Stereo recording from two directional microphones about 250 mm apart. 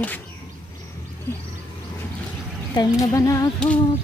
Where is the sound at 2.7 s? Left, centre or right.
Centre.